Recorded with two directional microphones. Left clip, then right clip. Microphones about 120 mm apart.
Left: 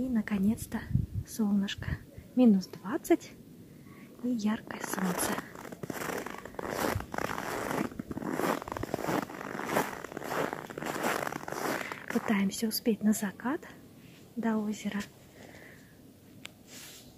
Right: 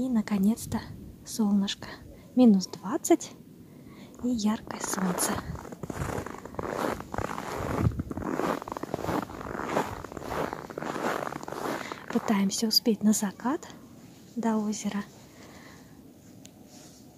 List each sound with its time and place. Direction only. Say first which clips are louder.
0.1 s a woman's voice: right 3 dB; 25° right (ahead or behind)
4.4 s a woman's voice: right 3 dB; 25° right (ahead or behind)
4.8 s zipper: right 3 dB; 10° left (ahead or behind)
12.3 s a woman's voice: right 6 dB; 20° right (ahead or behind)
14.7 s a woman's voice: right 3 dB; 20° right (ahead or behind)